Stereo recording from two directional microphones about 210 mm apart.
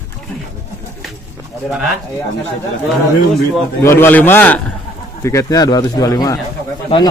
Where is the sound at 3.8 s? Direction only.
10° left (ahead or behind).